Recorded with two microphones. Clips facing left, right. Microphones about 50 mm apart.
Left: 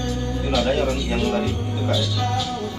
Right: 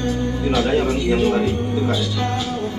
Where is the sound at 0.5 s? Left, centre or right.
Right.